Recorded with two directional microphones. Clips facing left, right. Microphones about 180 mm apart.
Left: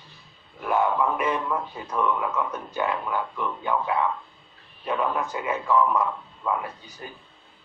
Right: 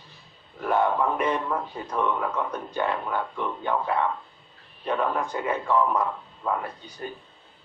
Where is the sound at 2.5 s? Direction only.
5° left (ahead or behind).